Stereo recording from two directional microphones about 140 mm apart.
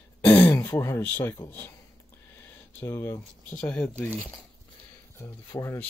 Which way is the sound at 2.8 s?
20° left (ahead or behind).